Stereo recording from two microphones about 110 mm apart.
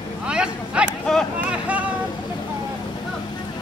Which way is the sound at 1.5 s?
10° right (ahead or behind).